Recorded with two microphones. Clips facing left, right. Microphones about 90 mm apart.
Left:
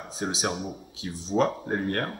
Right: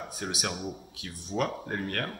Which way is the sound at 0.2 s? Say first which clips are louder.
Left 5 dB; 25° left (ahead or behind).